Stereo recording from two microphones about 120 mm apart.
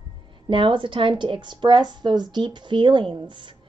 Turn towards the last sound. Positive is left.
turn(degrees=-40)  # may be behind; listen again after turning